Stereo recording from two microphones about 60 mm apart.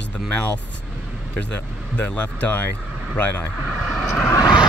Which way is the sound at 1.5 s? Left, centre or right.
Left.